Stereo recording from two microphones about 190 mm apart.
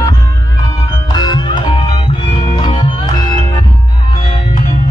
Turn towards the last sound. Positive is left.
turn(degrees=25)  # may be behind; listen again after turning